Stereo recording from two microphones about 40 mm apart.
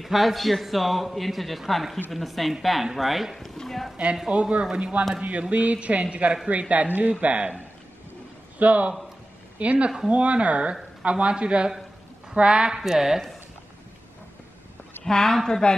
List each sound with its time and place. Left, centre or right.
0.0 s a man's voice: centre
3.3 s speech: centre
4.3 s speech: right
8.5 s speech: right
9.8 s speech: right
10.1 s speech: right
12.7 s a woman's voice: centre
15.0 s speech: centre